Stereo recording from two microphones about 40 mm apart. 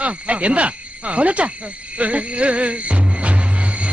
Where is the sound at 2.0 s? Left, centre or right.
Right.